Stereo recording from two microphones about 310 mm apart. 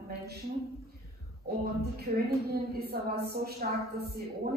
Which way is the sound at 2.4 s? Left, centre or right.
Right.